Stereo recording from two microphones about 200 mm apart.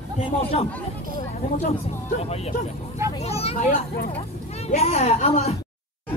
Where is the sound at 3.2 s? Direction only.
30° left (ahead or behind).